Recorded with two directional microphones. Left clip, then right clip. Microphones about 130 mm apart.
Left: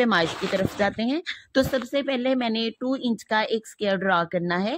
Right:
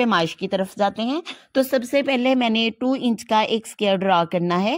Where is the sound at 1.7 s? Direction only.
40° right (ahead or behind).